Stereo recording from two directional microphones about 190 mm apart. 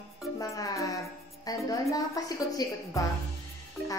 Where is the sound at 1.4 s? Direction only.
20° left (ahead or behind).